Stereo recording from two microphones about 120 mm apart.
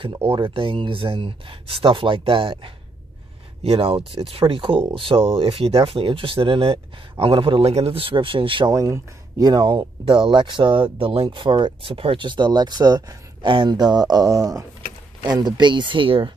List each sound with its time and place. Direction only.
0.3 s speech: 45° right (ahead or behind)
8.7 s speech: 25° right (ahead or behind); by 16.3 s 45° right (ahead or behind)